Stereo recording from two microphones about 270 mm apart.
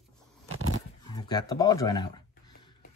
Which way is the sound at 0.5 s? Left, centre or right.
Right.